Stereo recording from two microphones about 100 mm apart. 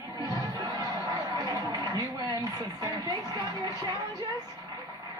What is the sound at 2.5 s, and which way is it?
Speech, 35° right (ahead or behind).